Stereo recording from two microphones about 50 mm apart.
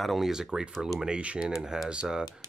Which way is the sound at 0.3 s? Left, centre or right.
Centre.